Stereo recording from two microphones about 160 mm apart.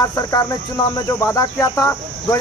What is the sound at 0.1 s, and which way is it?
Speech, 25° left (ahead or behind).